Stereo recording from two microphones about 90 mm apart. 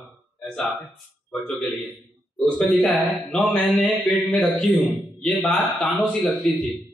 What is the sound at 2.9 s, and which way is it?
Speech, centre (ahead or behind).